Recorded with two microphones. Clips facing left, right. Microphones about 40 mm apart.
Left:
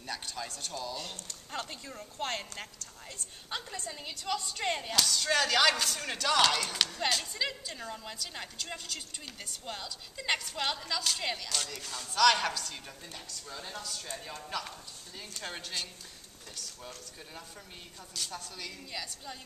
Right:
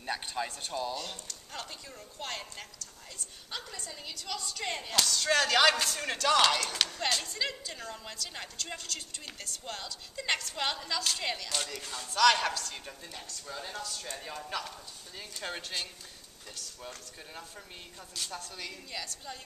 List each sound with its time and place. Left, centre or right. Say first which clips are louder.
0.0 s speech: right 4 dB; right
1.2 s speech: left 3 dB; left
3.5 s a woman's voice: left 3 dB; centre
4.9 s a woman's voice: right 3 dB; centre